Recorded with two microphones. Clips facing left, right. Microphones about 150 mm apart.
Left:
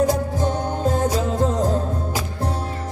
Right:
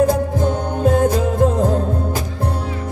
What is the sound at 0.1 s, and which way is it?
Music, 55° right (ahead or behind).